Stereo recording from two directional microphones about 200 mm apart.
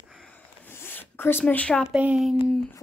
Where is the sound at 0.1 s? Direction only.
5° left (ahead or behind).